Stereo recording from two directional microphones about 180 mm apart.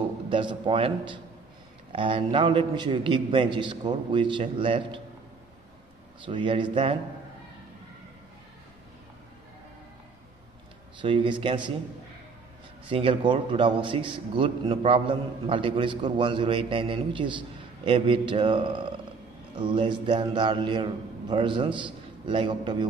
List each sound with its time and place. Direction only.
0.3 s a man's voice: 25° right (ahead or behind)
6.2 s a man's voice: 25° right (ahead or behind)
11.0 s a man's voice: 25° right (ahead or behind)
12.8 s a man's voice: 30° right (ahead or behind)